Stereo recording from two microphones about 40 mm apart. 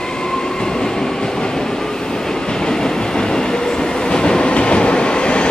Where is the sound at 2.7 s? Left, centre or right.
Centre.